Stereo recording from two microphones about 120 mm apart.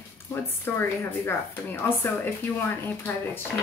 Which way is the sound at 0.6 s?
20° left (ahead or behind).